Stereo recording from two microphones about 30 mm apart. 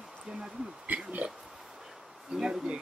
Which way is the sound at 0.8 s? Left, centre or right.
Right.